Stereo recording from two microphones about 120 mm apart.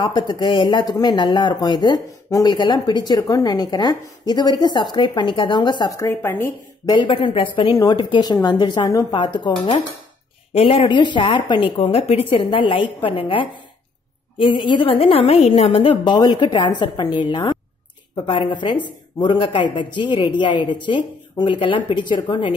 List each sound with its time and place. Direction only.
0.0 s speech: 40° left (ahead or behind)
5.9 s speech: 20° left (ahead or behind)
6.9 s a woman's voice: 40° left (ahead or behind)
10.5 s a woman's voice: 55° left (ahead or behind)